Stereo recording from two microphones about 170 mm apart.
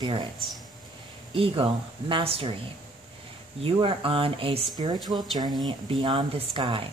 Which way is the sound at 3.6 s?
30° right (ahead or behind).